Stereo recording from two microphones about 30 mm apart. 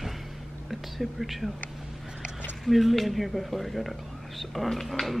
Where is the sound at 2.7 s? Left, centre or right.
Centre.